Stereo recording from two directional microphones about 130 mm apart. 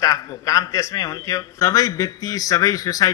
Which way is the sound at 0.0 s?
25° left (ahead or behind).